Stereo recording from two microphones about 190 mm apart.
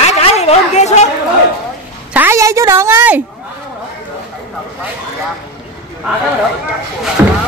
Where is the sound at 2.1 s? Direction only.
10° right (ahead or behind).